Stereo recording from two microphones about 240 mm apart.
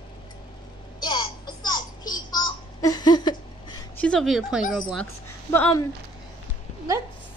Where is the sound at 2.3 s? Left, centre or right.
Centre.